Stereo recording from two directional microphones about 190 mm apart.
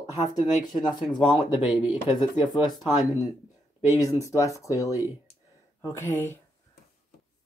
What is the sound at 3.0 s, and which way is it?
Speech, 20° left (ahead or behind).